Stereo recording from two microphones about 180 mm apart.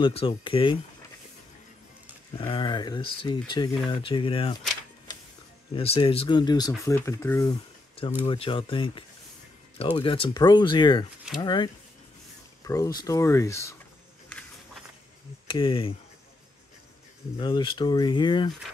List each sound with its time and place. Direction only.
0.0 s speech: 30° left (ahead or behind)
2.3 s speech: 30° left (ahead or behind)
5.8 s speech: 30° left (ahead or behind)
8.3 s speech: 30° left (ahead or behind)
15.4 s speech: 25° left (ahead or behind)
17.4 s speech: 25° left (ahead or behind)